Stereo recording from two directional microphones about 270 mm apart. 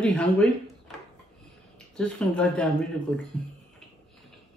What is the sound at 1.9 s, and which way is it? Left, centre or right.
Speech, centre.